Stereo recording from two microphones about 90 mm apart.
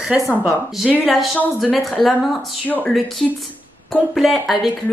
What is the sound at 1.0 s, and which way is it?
A woman's voice, centre (ahead or behind).